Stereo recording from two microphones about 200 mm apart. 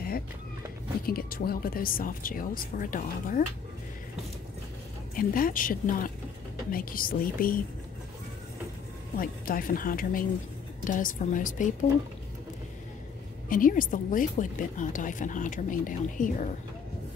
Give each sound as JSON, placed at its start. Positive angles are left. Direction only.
{"t": 1.0, "sound": "speech", "side_deg": 50}
{"t": 5.1, "sound": "speech", "side_deg": 45}
{"t": 9.2, "sound": "speech", "side_deg": 45}
{"t": 13.5, "sound": "speech", "side_deg": 45}